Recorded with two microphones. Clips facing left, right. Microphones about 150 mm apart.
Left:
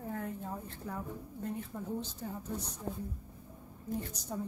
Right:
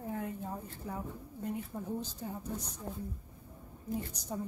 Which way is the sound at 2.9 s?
25° left (ahead or behind).